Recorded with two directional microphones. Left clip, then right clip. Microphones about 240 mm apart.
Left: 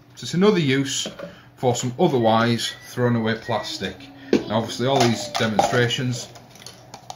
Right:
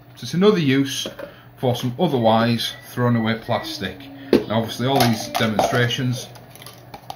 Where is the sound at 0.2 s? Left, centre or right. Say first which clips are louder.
Right 2 dB; centre.